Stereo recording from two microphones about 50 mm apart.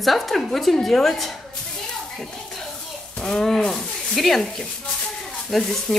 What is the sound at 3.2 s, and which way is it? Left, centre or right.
Speech, centre.